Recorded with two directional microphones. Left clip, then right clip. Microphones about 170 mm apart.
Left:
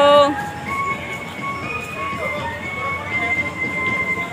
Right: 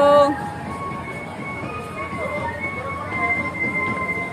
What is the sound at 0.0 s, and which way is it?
Music, centre (ahead or behind).